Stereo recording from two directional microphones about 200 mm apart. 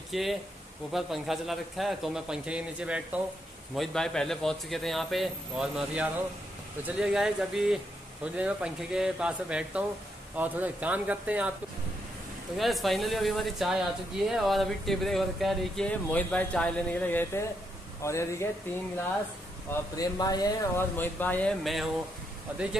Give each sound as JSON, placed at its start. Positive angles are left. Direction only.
{"t": 0.1, "sound": "speech", "side_deg": 0}
{"t": 12.5, "sound": "speech", "side_deg": 0}
{"t": 20.0, "sound": "speech", "side_deg": 20}